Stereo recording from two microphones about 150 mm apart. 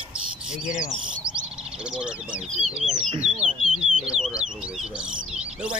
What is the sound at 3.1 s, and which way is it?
Speech, 45° right (ahead or behind).